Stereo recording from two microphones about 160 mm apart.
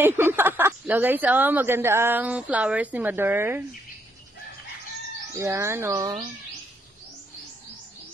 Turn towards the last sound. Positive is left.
turn(degrees=-20)  # may be behind; listen again after turning